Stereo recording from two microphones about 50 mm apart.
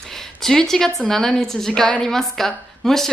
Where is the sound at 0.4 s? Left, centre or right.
Centre.